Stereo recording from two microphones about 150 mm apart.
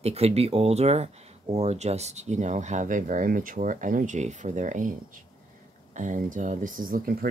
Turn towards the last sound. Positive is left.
turn(degrees=-75)  # may be behind; listen again after turning